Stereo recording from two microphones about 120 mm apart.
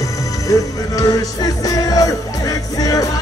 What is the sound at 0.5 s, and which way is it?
Music, 30° left (ahead or behind).